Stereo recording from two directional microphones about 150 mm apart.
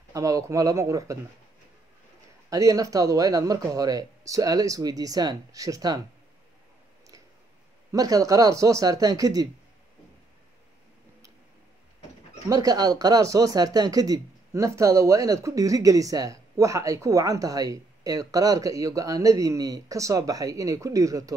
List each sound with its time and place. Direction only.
0.1 s speech: 20° right (ahead or behind)
2.5 s speech: 20° right (ahead or behind)
7.9 s speech: 25° right (ahead or behind)
12.4 s speech: 25° right (ahead or behind)